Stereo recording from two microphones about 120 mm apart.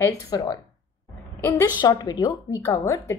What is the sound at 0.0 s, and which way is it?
Speech, 30° left (ahead or behind).